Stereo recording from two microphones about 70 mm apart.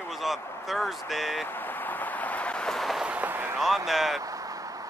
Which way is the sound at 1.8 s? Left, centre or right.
Left.